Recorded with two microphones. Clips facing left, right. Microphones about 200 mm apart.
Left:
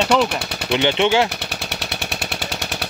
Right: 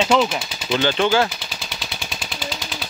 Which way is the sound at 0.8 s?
25° left (ahead or behind).